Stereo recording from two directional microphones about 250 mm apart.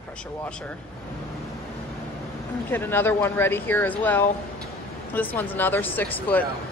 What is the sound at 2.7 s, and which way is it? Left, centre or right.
Speech, centre.